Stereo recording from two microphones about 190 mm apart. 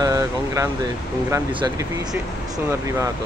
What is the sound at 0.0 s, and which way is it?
Speech, 15° right (ahead or behind).